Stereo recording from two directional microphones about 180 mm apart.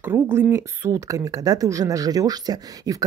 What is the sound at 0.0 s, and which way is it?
Speech, 10° right (ahead or behind).